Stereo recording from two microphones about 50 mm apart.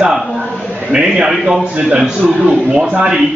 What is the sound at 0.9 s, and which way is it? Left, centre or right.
Speech, centre.